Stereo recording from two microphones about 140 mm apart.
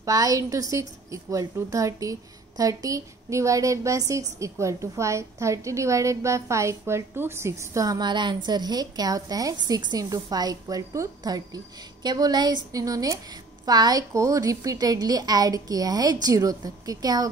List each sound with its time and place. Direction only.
0.0 s a woman's voice: 25° right (ahead or behind)